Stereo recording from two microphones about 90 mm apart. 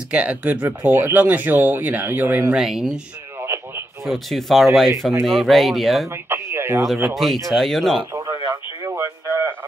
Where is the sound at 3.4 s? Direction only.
25° right (ahead or behind).